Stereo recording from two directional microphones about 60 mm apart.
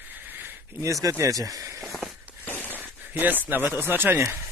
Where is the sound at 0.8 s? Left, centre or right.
Right.